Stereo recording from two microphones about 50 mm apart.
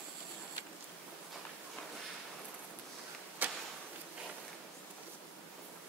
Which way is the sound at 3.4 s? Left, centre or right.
Right.